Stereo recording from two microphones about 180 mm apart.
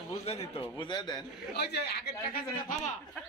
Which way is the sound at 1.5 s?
65° left (ahead or behind).